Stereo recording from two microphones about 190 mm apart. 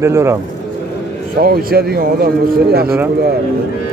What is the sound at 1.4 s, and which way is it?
A man's voice, 55° right (ahead or behind).